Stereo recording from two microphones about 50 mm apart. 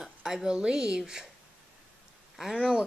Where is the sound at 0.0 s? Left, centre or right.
Centre.